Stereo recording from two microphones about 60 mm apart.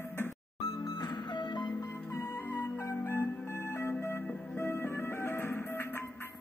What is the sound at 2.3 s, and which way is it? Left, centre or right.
Music, left.